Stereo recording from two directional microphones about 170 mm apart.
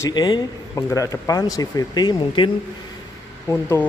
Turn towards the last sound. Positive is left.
turn(degrees=15)  # may be behind; listen again after turning